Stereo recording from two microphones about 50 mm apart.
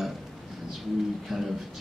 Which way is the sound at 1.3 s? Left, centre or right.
Centre.